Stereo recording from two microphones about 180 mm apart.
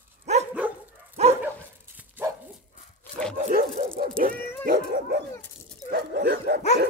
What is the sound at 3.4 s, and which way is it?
Dog, 45° right (ahead or behind).